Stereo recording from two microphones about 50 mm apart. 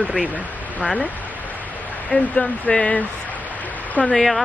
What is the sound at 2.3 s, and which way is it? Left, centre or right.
Speech, left.